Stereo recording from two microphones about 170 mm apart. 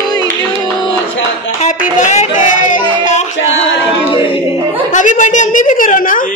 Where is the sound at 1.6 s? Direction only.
45° left (ahead or behind).